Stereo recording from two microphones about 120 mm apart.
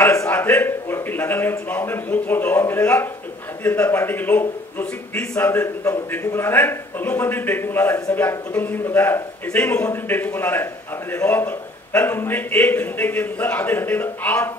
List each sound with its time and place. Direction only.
0.0 s a man's voice: 20° left (ahead or behind)